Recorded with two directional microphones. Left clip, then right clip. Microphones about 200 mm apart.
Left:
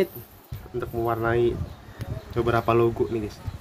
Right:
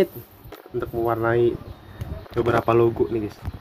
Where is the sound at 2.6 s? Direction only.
5° left (ahead or behind).